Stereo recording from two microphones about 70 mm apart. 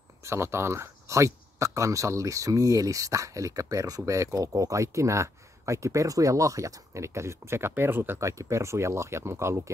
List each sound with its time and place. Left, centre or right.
0.2 s speech: right
8.2 s speech: right